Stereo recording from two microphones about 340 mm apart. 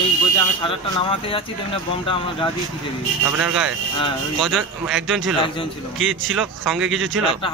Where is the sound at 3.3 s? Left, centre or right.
Centre.